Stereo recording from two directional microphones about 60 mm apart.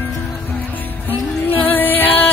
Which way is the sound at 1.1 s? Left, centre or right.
Left.